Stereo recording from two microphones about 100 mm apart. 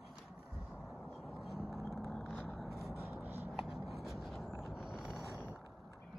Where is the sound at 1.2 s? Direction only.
Centre (ahead or behind).